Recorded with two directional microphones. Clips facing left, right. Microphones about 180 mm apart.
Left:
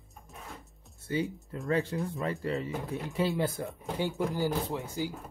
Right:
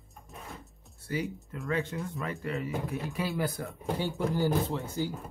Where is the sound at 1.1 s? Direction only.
30° left (ahead or behind); by 5.1 s 15° left (ahead or behind).